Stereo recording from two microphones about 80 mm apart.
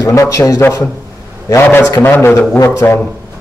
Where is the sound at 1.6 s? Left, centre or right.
Left.